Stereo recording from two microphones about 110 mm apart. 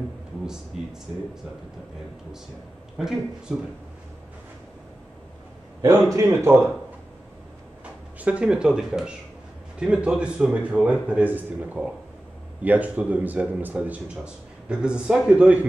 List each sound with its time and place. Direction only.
3.0 s speech: 5° right (ahead or behind)
5.8 s a man's voice: 30° right (ahead or behind)
6.2 s speech: 20° right (ahead or behind)
8.2 s speech: 10° right (ahead or behind)